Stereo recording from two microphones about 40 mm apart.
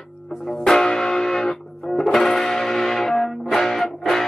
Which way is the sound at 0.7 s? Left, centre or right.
Centre.